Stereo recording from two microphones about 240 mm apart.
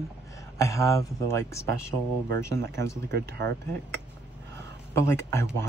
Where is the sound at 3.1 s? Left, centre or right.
Right.